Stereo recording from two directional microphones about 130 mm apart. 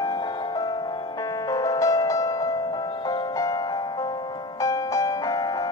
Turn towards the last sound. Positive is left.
turn(degrees=30)  # may be behind; listen again after turning